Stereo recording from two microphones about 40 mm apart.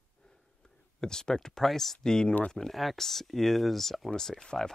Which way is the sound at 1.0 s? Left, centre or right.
Centre.